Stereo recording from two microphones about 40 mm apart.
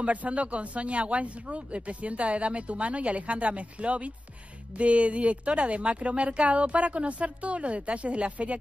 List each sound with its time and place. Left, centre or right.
0.0 s speech: right